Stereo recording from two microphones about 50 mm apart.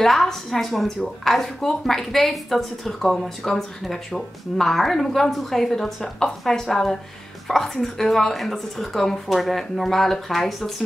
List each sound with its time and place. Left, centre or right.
0.0 s a woman's voice: centre